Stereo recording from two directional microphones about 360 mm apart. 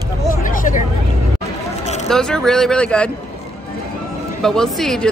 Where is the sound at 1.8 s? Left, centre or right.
Centre.